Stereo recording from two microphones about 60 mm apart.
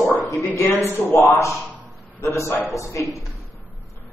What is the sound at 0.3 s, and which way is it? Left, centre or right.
Speech, left.